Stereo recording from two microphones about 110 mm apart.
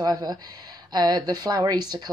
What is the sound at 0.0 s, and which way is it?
Speech, 35° right (ahead or behind).